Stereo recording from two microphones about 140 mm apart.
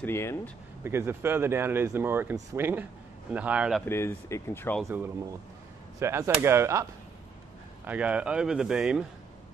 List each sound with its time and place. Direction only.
0.0 s speech: 20° left (ahead or behind)
0.8 s speech: 15° right (ahead or behind)
3.8 s speech: 15° left (ahead or behind)
5.9 s speech: 20° right (ahead or behind)
7.8 s speech: 10° right (ahead or behind)